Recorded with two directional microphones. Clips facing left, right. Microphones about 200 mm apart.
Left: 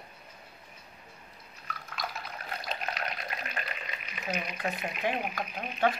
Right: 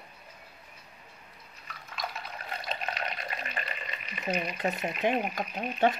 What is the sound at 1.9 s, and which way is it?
Liquid, centre (ahead or behind).